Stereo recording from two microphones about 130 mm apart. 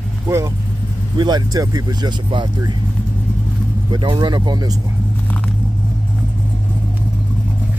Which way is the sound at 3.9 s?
35° right (ahead or behind).